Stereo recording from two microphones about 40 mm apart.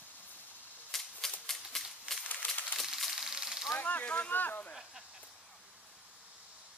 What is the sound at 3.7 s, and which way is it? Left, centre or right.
Speech, left.